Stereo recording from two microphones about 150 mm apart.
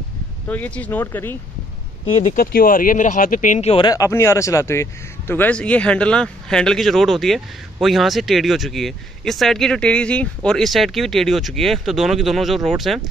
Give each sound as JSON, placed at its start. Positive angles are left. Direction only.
{"t": 0.5, "sound": "speech", "side_deg": 10}
{"t": 2.3, "sound": "speech", "side_deg": 75}
{"t": 3.7, "sound": "speech", "side_deg": 25}